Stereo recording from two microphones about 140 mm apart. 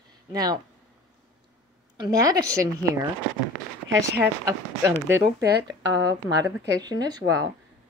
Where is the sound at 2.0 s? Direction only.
25° right (ahead or behind).